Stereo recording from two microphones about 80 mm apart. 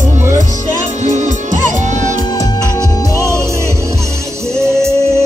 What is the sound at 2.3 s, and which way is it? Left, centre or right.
Music, left.